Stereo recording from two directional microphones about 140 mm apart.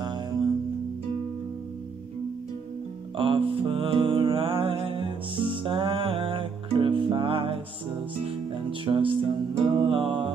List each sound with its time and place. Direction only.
3.2 s music: 40° right (ahead or behind)
8.8 s music: 35° right (ahead or behind)